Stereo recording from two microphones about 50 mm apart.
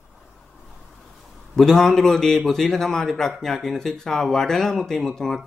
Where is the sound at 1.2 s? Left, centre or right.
Centre.